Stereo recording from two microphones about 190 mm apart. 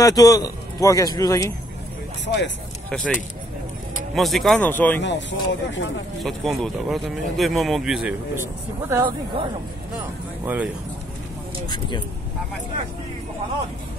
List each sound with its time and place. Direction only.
0.0 s speech: 20° left (ahead or behind)
2.2 s speech: 70° left (ahead or behind)
2.9 s speech: 5° left (ahead or behind)
5.0 s speech: 70° left (ahead or behind)
6.2 s speech: centre (ahead or behind)
10.4 s speech: 10° right (ahead or behind)